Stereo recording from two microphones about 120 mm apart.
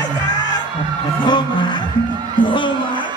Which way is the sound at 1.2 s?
40° left (ahead or behind).